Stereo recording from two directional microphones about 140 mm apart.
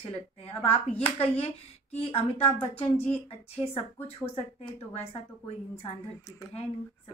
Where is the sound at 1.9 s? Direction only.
45° left (ahead or behind).